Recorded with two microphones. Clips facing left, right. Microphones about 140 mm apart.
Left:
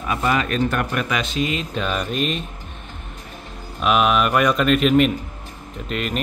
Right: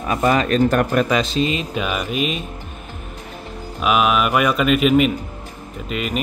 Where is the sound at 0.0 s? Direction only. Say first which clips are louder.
Right 4 dB; 40° right (ahead or behind).